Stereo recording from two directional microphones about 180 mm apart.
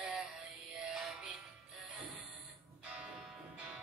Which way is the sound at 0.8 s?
5° right (ahead or behind).